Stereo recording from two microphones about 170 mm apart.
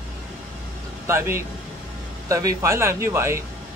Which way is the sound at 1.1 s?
15° right (ahead or behind).